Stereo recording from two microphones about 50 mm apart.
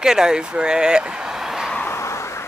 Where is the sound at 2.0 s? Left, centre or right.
Left.